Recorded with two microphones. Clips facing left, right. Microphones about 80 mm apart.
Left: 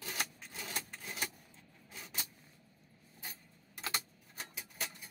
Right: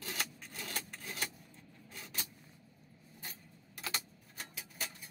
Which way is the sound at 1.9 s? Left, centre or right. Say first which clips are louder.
Even; centre.